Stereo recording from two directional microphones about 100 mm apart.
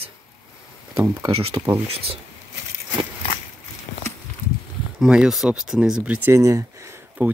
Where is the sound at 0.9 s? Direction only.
30° right (ahead or behind).